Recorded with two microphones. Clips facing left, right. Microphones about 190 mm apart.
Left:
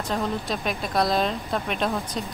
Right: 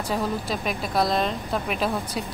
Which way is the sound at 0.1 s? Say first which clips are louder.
Even; centre (ahead or behind).